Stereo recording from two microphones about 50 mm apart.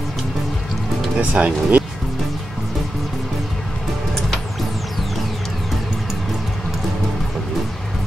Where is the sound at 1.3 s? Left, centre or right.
Right.